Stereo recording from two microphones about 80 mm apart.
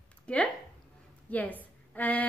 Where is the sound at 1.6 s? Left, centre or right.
Left.